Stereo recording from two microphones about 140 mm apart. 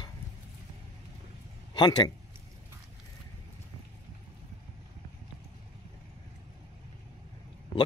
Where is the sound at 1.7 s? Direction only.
30° left (ahead or behind).